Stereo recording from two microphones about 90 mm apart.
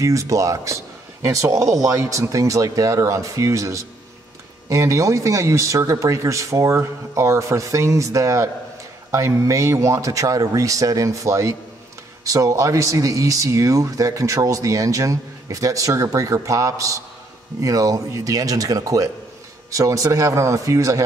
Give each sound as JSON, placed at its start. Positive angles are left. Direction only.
{"t": 0.0, "sound": "speech", "side_deg": -35}